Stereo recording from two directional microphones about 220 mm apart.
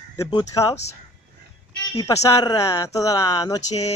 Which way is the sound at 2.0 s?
15° left (ahead or behind).